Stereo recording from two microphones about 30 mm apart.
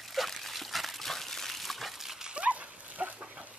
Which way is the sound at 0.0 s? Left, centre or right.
Centre.